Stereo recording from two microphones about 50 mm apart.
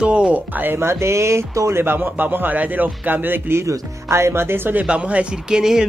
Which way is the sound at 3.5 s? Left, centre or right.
Right.